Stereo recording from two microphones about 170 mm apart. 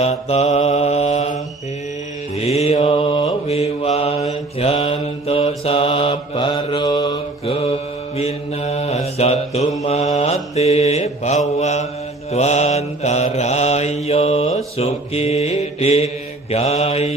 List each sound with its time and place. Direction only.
0.0 s mantra: 40° left (ahead or behind)
7.5 s mantra: 35° left (ahead or behind)